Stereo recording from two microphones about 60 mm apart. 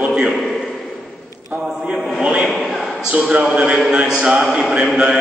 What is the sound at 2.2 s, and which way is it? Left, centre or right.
A man's voice, centre.